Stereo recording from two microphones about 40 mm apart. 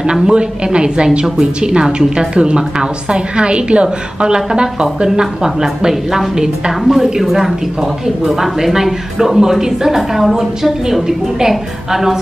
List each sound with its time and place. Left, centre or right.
0.0 s a woman's voice: right